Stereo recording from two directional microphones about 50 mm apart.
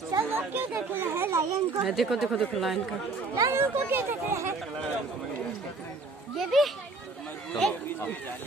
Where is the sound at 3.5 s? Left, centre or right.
Right.